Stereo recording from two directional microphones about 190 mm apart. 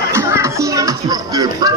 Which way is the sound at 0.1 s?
15° right (ahead or behind).